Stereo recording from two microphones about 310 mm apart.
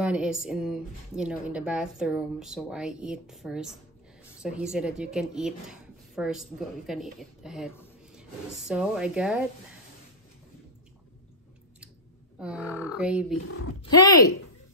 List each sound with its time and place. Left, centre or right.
0.0 s a woman's voice: centre
12.4 s a woman's voice: centre
13.4 s speech: left
13.7 s speech: centre